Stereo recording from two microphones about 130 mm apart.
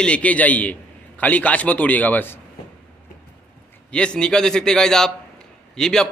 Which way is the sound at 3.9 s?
10° left (ahead or behind).